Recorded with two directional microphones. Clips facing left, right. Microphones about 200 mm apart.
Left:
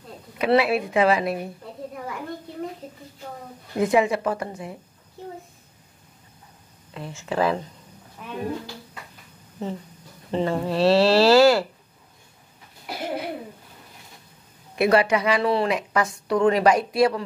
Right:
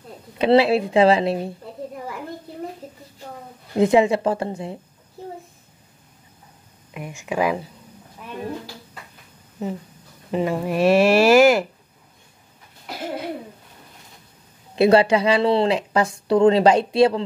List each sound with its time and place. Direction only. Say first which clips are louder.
0.4 s a woman's voice: right 4 dB; 25° right (ahead or behind)
3.7 s a woman's voice: right 4 dB; 25° right (ahead or behind)
6.9 s speech: right 1 dB; 15° right (ahead or behind)
9.6 s speech: right 2 dB; 5° right (ahead or behind)
14.8 s a woman's voice: right 4 dB; 30° right (ahead or behind)